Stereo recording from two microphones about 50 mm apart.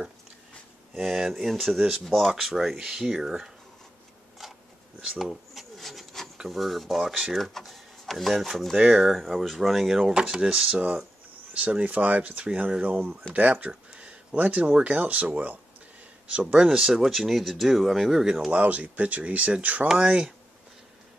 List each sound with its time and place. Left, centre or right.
0.9 s speech: centre
5.3 s rub: centre
6.3 s speech: centre
8.7 s speech: centre
11.8 s speech: right
15.3 s speech: right
16.3 s speech: right
16.6 s speech: centre
18.5 s speech: right
20.0 s speech: centre